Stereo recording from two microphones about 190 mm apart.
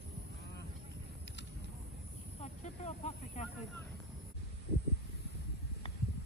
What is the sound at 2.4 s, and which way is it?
Vehicle, 35° left (ahead or behind).